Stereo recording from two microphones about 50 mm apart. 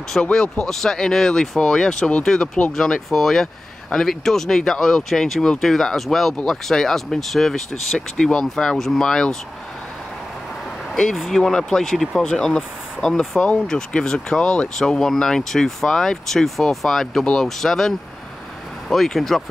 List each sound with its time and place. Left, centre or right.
0.2 s speech: centre
2.7 s speech: centre
8.3 s speech: centre
10.9 s speech: centre
13.4 s speech: centre
14.8 s speech: centre